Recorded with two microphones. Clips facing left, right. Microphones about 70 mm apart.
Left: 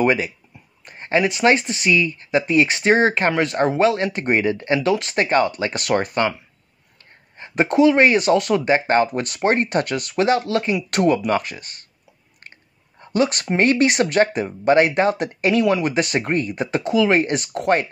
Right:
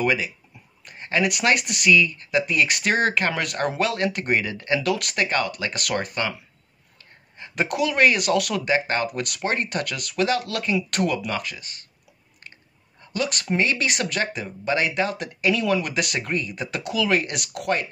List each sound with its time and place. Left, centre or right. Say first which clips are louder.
0.0 s speech: left 5 dB; left
7.3 s speech: left 7 dB; left
13.0 s speech: left 7 dB; left
16.8 s speech: left 5 dB; left